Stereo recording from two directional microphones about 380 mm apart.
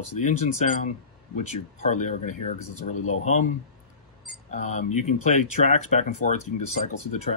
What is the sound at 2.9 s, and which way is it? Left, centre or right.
Speech, left.